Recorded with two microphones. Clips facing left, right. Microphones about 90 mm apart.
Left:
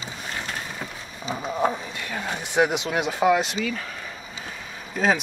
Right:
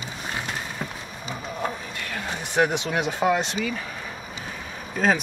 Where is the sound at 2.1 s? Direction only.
10° left (ahead or behind).